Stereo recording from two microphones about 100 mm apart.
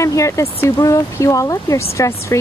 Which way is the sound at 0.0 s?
30° left (ahead or behind).